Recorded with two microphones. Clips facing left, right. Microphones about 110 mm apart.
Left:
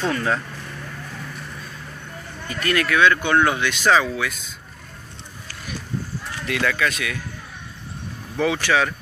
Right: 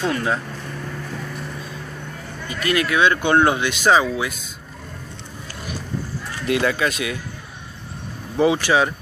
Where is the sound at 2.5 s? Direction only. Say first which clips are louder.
Right 1 dB; 15° right (ahead or behind).